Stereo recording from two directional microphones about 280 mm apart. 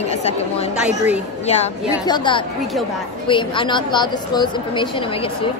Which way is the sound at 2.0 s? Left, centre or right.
Centre.